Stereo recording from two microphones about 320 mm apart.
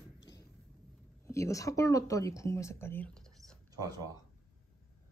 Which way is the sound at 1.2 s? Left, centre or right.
Centre.